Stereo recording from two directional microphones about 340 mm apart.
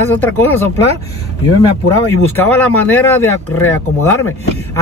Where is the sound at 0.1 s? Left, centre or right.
Centre.